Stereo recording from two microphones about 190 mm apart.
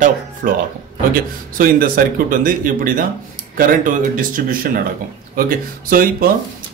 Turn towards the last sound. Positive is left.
turn(degrees=-50)  # may be behind; listen again after turning